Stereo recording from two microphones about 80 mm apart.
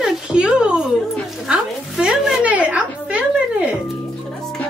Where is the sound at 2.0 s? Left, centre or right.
Centre.